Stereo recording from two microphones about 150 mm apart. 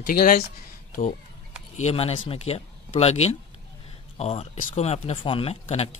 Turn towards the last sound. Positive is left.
turn(degrees=45)  # may be behind; listen again after turning